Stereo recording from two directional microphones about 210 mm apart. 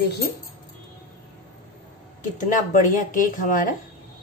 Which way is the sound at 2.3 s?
40° left (ahead or behind).